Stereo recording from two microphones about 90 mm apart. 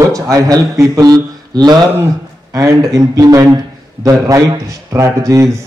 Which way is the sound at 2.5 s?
35° right (ahead or behind).